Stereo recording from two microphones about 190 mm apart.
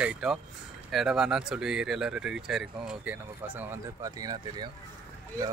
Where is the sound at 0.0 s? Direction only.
5° right (ahead or behind).